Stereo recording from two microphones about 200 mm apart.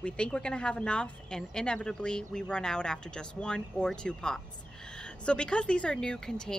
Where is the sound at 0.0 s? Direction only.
5° left (ahead or behind).